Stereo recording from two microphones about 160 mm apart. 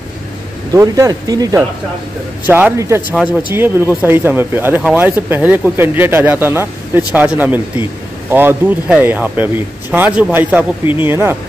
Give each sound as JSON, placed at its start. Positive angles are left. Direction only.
{"t": 0.7, "sound": "speech", "side_deg": -20}
{"t": 2.4, "sound": "speech", "side_deg": -10}